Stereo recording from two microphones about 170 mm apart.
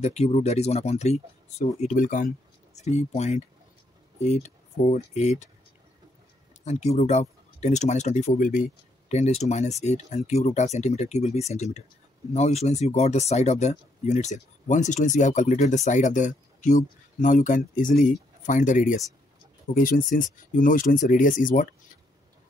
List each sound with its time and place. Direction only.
0.0 s speech: 40° left (ahead or behind)
2.7 s speech: 40° left (ahead or behind)
6.6 s speech: 40° left (ahead or behind)